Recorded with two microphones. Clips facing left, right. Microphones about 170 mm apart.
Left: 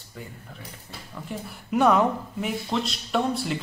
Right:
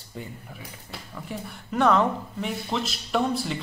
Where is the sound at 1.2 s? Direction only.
5° left (ahead or behind).